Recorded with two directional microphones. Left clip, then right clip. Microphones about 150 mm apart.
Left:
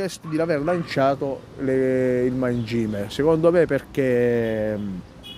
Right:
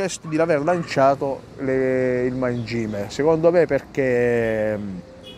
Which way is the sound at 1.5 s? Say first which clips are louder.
Even; 50° left (ahead or behind).